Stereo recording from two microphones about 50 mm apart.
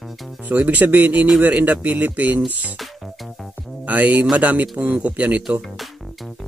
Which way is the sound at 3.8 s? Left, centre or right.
Right.